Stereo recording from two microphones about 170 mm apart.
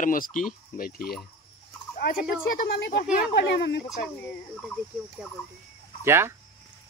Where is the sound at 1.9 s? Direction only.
55° left (ahead or behind).